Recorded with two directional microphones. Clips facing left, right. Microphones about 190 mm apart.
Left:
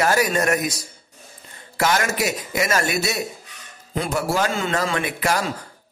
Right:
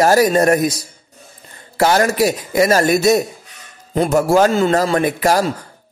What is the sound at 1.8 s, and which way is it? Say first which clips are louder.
Speech: right 7 dB; 35° right (ahead or behind).